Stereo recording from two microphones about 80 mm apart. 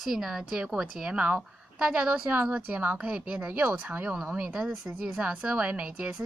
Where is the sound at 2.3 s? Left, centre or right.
Right.